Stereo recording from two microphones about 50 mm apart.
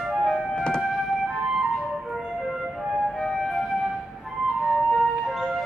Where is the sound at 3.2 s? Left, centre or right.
Centre.